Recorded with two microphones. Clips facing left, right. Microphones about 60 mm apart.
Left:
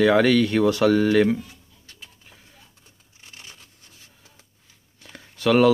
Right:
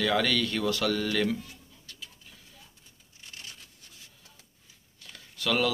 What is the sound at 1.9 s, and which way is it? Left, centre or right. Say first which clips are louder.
Bird: left 1 dB; left.